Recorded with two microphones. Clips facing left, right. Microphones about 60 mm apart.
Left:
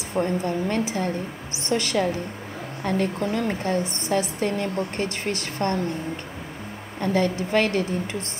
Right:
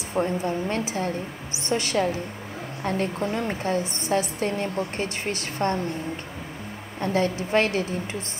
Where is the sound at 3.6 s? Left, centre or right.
Left.